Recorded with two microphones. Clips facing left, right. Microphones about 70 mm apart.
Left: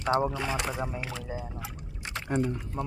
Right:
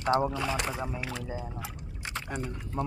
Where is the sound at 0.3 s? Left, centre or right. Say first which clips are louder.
Even; centre.